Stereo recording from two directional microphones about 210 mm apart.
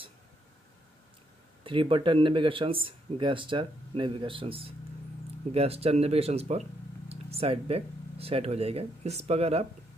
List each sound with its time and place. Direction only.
1.6 s speech: 25° right (ahead or behind)